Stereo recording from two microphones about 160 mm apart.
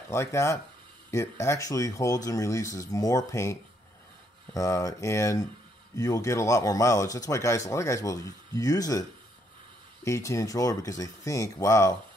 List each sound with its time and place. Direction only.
0.1 s speech: 15° left (ahead or behind)
4.6 s speech: 20° left (ahead or behind)
10.0 s speech: 20° left (ahead or behind)